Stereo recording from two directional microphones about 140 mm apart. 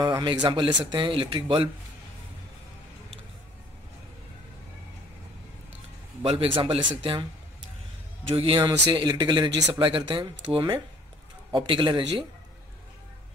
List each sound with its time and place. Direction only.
0.0 s speech: 30° right (ahead or behind)
6.2 s speech: 40° right (ahead or behind)
8.3 s speech: 40° right (ahead or behind)